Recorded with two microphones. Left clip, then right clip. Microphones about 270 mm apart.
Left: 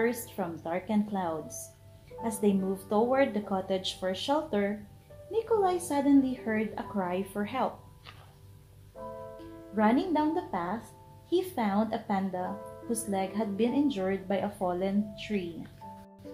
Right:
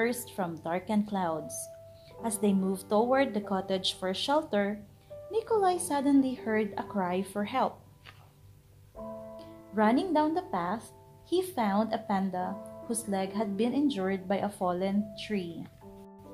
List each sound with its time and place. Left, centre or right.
0.0 s speech: right
9.8 s speech: right